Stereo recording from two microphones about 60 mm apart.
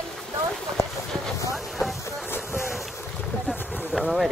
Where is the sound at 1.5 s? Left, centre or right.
Centre.